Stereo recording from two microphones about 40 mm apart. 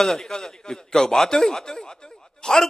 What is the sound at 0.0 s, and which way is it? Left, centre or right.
A man's voice, centre.